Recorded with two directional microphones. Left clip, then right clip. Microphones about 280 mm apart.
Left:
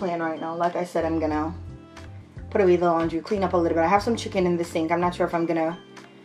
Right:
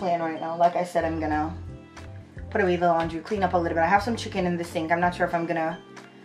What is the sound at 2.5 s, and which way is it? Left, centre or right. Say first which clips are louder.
Speech: left 2 dB; centre.